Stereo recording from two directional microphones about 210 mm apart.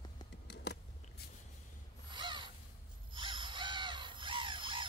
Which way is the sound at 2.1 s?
20° right (ahead or behind).